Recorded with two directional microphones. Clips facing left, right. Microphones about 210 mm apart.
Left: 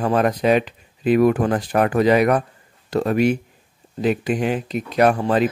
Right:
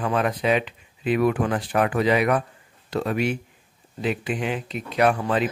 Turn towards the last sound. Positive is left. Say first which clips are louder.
# left 4 dB
turn(degrees=40)  # may be behind; listen again after turning